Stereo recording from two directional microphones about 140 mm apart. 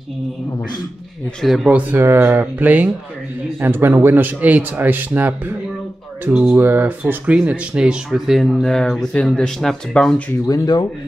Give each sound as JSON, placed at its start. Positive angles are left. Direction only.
{"t": 1.4, "sound": "speech", "side_deg": -5}
{"t": 10.4, "sound": "speech", "side_deg": 25}